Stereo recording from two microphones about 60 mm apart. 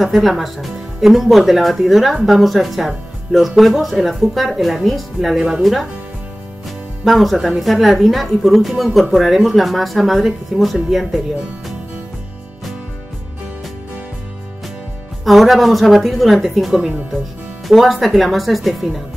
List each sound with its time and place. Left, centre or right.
0.0 s speech: centre
7.1 s speech: centre
15.2 s speech: centre